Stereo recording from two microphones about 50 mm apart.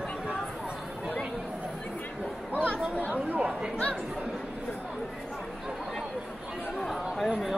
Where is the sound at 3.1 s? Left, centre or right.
Right.